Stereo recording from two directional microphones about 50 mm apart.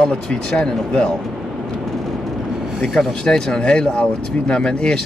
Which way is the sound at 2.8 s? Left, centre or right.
Centre.